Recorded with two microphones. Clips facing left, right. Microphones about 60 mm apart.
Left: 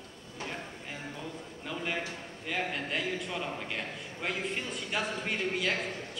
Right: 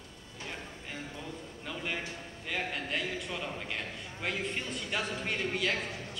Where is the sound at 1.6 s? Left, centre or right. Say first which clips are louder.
Left 2 dB; centre.